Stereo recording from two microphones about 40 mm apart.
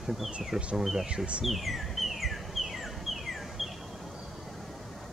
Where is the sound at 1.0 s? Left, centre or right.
Right.